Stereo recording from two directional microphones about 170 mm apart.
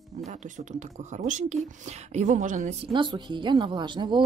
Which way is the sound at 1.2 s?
45° right (ahead or behind).